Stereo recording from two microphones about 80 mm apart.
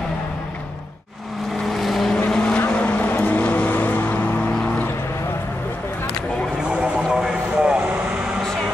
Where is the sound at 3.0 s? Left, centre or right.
Left.